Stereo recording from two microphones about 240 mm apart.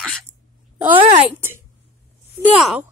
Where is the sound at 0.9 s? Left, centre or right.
Right.